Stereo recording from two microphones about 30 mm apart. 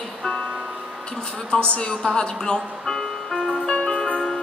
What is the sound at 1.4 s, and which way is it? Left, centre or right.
Speech, left.